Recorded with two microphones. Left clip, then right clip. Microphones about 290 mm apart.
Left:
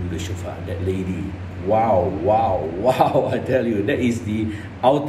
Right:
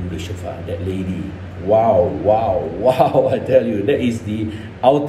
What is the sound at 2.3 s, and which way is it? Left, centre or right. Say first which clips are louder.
A man's voice: right 2 dB; centre.